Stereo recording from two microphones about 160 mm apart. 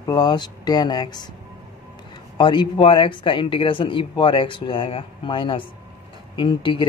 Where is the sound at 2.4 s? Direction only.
30° left (ahead or behind).